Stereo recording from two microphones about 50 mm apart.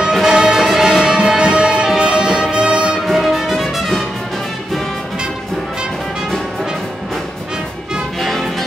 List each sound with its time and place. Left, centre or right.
0.0 s music: centre
3.1 s music: centre
8.2 s music: centre